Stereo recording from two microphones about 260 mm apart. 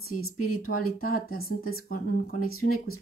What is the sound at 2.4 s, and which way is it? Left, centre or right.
Speech, left.